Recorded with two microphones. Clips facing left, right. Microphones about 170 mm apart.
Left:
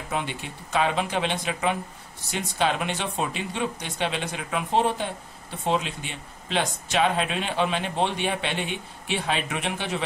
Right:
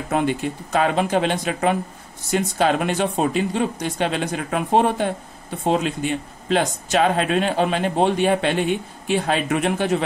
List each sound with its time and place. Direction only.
0.1 s speech: 45° right (ahead or behind)